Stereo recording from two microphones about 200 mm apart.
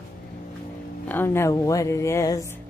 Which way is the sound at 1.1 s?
10° left (ahead or behind).